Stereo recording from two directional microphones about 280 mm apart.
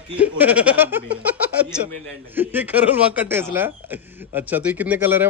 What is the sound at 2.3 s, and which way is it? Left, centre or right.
Speech, centre.